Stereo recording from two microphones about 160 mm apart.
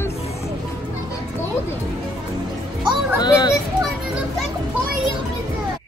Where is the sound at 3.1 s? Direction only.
25° left (ahead or behind).